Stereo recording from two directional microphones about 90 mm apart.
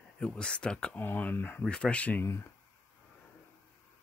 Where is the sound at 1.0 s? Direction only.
20° left (ahead or behind).